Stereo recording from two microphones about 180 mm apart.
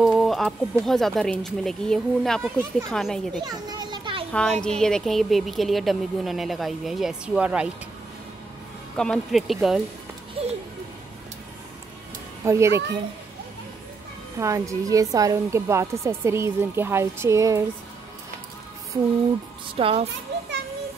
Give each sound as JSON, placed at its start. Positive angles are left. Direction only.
{"t": 0.0, "sound": "speech", "side_deg": 0}
{"t": 3.4, "sound": "children playing", "side_deg": -20}
{"t": 4.3, "sound": "speech", "side_deg": 5}
{"t": 8.9, "sound": "speech", "side_deg": 5}
{"t": 10.4, "sound": "speech", "side_deg": -30}
{"t": 12.4, "sound": "a woman's voice", "side_deg": -15}
{"t": 14.4, "sound": "a woman's voice", "side_deg": -15}
{"t": 19.7, "sound": "a child's voice", "side_deg": -30}
{"t": 20.3, "sound": "children playing", "side_deg": -80}